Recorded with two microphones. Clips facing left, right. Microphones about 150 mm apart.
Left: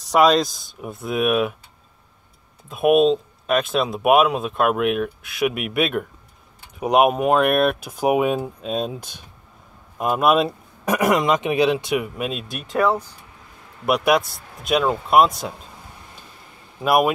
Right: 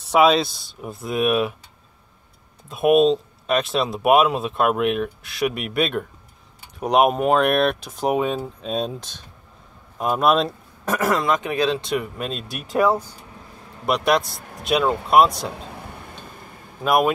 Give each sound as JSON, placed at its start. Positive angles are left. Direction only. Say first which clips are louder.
{"t": 0.1, "sound": "speech", "louder": "even", "side_deg": -5}
{"t": 2.7, "sound": "speech", "louder": "even", "side_deg": 0}
{"t": 12.7, "sound": "speech", "louder": "right 1 dB", "side_deg": -10}
{"t": 13.8, "sound": "speech", "louder": "left 1 dB", "side_deg": 5}
{"t": 15.5, "sound": "a sound", "louder": "right 6 dB", "side_deg": -70}
{"t": 16.8, "sound": "speech", "louder": "left 1 dB", "side_deg": 5}